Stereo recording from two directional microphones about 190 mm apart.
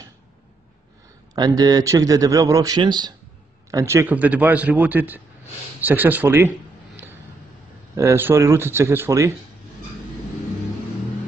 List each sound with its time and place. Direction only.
1.3 s a man's voice: 20° right (ahead or behind)
7.9 s a man's voice: 15° right (ahead or behind)